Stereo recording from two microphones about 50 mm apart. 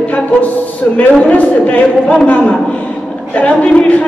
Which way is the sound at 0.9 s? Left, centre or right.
Left.